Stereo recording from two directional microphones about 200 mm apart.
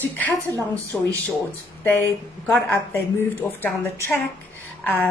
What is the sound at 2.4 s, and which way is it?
A woman's voice, 10° left (ahead or behind).